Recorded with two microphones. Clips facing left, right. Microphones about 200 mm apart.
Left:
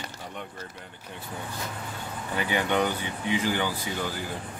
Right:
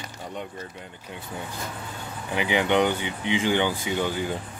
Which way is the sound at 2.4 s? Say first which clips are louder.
Right 4 dB; 15° right (ahead or behind).